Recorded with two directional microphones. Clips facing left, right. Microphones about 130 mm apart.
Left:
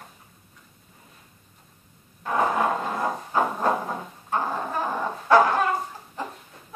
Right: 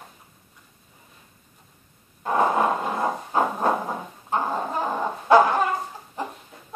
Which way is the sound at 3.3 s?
15° right (ahead or behind).